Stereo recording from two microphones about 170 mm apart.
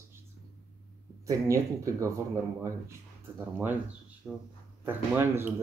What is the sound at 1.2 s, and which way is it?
Speech, 20° right (ahead or behind).